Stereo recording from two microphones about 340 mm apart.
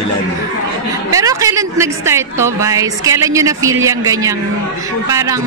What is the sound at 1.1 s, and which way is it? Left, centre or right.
A woman's voice, centre.